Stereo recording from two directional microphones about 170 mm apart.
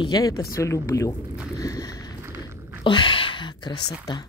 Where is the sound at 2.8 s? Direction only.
30° left (ahead or behind).